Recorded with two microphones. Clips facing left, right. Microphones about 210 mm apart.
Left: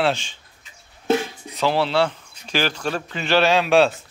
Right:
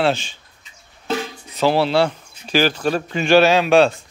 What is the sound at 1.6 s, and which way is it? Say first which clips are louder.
A man's voice: right 3 dB; 40° right (ahead or behind).